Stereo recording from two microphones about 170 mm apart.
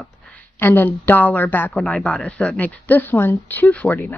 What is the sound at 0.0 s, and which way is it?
A woman's voice, 10° left (ahead or behind).